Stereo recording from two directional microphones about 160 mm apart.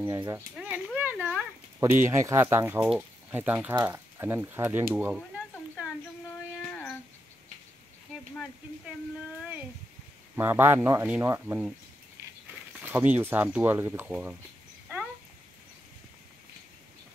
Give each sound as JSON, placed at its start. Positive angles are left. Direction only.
{"t": 0.0, "sound": "speech", "side_deg": -20}
{"t": 0.6, "sound": "a sound", "side_deg": -5}
{"t": 1.2, "sound": "speech", "side_deg": -15}
{"t": 6.7, "sound": "a sound", "side_deg": 10}
{"t": 10.3, "sound": "speech", "side_deg": -15}
{"t": 12.8, "sound": "speech", "side_deg": -10}